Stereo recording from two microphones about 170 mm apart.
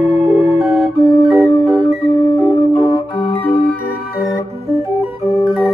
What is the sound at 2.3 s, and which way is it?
Music, 20° left (ahead or behind).